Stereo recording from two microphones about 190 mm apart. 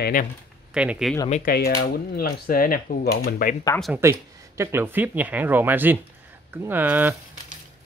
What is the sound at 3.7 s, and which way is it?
Speech, centre (ahead or behind).